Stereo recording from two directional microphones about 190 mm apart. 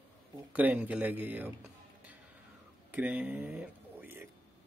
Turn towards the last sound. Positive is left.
turn(degrees=-10)  # may be behind; listen again after turning